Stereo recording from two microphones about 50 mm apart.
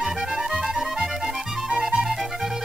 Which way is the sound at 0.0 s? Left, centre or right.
Centre.